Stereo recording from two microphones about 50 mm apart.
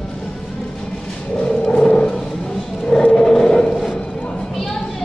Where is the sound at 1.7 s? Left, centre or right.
Centre.